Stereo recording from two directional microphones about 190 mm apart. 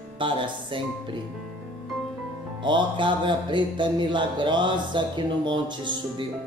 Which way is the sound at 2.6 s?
25° right (ahead or behind).